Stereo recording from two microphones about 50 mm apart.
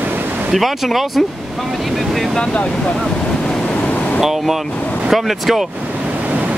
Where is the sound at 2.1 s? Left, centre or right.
Centre.